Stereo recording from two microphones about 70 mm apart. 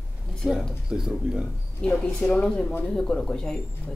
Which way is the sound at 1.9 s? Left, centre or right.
Centre.